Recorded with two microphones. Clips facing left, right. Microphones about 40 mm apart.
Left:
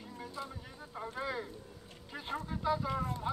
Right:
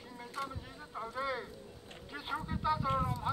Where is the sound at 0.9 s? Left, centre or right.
Centre.